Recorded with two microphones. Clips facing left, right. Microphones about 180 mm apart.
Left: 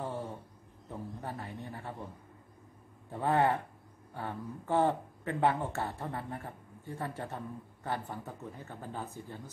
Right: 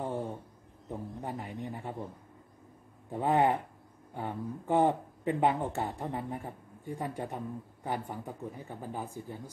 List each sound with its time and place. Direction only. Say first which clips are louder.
0.0 s a sound: right 3 dB; 15° right (ahead or behind)
0.8 s a man's voice: right 3 dB; 15° right (ahead or behind)
3.1 s speech: right 2 dB; 15° right (ahead or behind)